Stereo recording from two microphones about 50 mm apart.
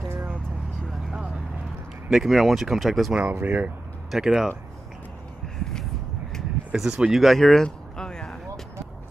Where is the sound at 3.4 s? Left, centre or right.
Right.